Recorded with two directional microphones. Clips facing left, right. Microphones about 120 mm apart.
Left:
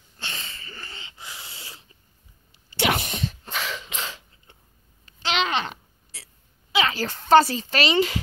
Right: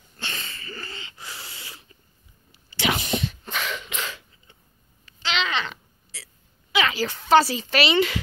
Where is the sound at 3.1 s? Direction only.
40° left (ahead or behind).